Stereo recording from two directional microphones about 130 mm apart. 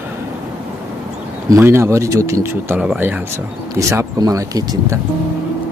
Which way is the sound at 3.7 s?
25° right (ahead or behind).